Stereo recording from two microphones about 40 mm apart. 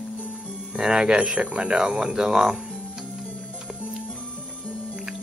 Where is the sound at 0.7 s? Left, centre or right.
Right.